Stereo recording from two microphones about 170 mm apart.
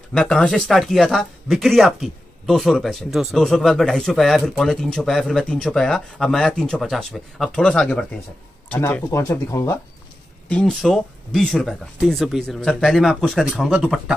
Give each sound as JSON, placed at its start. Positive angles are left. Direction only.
{"t": 0.1, "sound": "speech", "side_deg": 5}
{"t": 10.5, "sound": "speech", "side_deg": 0}